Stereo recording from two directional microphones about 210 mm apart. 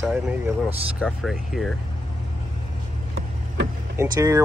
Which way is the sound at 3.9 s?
15° right (ahead or behind).